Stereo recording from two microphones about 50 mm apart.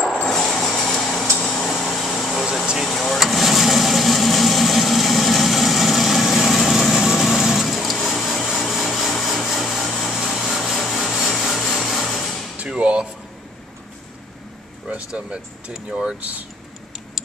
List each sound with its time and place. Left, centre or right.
0.3 s a sound: centre
1.8 s air conditioning: centre
2.9 s vehicle: centre
12.6 s music: centre
15.0 s speech: centre